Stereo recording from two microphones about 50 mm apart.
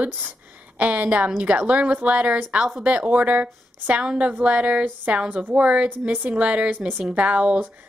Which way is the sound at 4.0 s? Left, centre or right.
Right.